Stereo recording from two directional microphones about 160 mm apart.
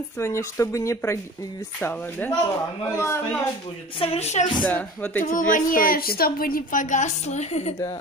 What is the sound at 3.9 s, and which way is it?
Speech, 40° left (ahead or behind).